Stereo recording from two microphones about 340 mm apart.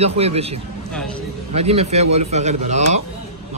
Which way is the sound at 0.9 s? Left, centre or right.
Centre.